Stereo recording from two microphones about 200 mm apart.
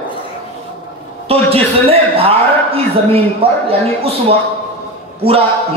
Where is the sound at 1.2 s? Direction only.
30° right (ahead or behind).